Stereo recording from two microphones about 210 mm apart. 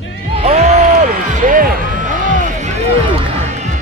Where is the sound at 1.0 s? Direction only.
40° right (ahead or behind).